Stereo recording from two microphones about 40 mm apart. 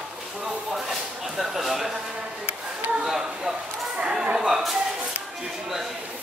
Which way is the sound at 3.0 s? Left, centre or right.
Centre.